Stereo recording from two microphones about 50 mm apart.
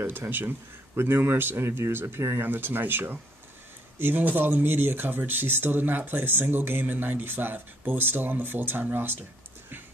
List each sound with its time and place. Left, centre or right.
0.3 s speech: right